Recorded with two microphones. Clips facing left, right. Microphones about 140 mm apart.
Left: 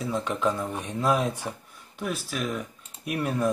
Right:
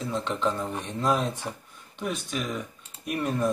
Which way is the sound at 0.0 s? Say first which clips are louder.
Left 1 dB; 10° left (ahead or behind).